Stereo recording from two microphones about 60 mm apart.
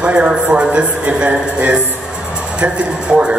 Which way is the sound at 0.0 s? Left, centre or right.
Centre.